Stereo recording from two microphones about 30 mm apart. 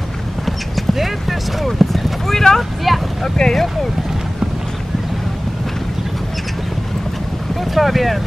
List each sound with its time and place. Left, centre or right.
0.9 s clip-clop: centre
2.2 s speech: centre
2.9 s speech: centre
3.4 s speech: left
7.7 s speech: centre